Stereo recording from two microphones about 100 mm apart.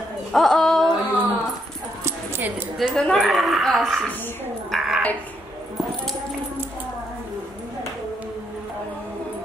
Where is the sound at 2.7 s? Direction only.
5° left (ahead or behind).